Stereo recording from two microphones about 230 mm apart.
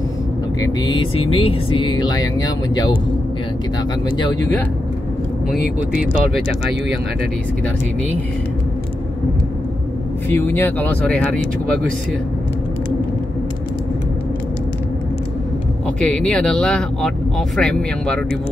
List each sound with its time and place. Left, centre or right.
0.6 s speech: centre
10.3 s speech: centre
16.0 s speech: centre